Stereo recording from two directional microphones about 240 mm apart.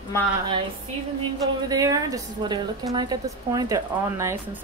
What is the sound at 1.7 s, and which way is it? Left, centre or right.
A woman's voice, centre.